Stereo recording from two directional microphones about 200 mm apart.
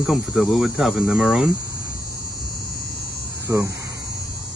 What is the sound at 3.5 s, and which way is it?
Speech, 15° right (ahead or behind).